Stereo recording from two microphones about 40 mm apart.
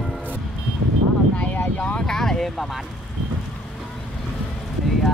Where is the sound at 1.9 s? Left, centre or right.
Centre.